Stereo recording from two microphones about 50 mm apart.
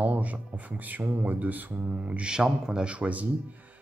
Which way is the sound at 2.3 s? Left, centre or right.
Centre.